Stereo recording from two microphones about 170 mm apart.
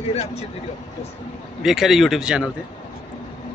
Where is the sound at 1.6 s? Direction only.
Centre (ahead or behind).